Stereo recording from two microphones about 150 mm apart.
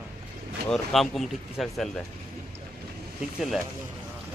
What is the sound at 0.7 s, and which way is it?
Speech, centre (ahead or behind).